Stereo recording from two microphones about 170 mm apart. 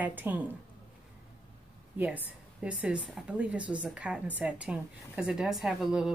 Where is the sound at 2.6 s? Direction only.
5° right (ahead or behind).